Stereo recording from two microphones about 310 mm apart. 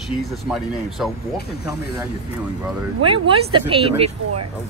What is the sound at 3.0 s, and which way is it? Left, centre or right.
Speech, centre.